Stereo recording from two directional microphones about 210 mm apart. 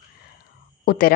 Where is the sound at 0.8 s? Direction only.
45° left (ahead or behind).